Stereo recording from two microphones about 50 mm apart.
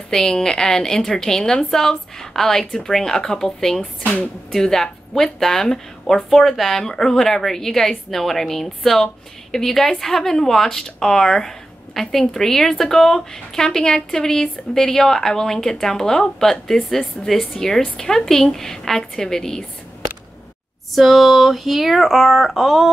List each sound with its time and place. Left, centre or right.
0.1 s a woman's voice: centre
4.0 s speech: left
4.5 s a woman's voice: centre
20.9 s speech: centre